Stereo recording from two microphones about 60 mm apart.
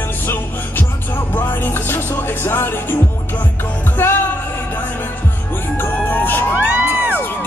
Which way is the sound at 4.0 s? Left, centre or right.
Left.